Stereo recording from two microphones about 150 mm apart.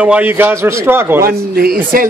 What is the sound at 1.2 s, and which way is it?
Speech, 85° right.